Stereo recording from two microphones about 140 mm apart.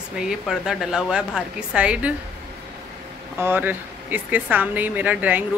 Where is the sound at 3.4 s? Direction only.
15° right (ahead or behind).